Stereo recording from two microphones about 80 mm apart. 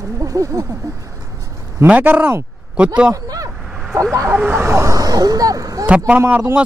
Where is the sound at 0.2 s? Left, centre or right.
Right.